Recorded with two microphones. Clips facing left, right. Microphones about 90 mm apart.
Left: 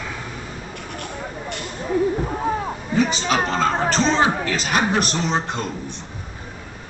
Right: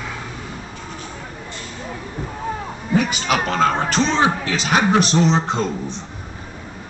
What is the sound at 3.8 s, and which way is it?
A man's voice, 35° left (ahead or behind).